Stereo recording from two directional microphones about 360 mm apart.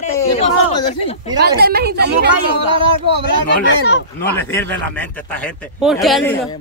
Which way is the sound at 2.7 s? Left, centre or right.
Centre.